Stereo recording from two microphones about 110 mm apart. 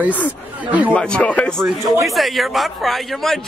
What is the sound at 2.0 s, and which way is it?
A man's voice, centre (ahead or behind).